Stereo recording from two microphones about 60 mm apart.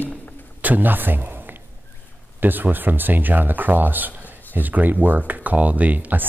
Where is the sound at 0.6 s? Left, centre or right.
Right.